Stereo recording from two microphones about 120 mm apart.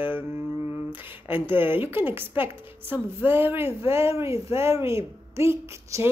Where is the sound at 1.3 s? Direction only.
15° right (ahead or behind).